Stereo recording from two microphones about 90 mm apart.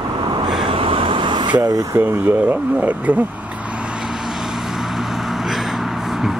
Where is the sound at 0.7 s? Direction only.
90° right; by 2.0 s 45° right (ahead or behind).